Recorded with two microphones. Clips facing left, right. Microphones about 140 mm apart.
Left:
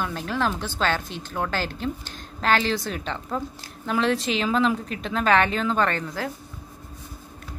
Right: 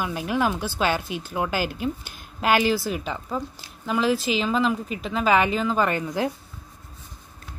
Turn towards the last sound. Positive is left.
turn(degrees=-15)  # may be behind; listen again after turning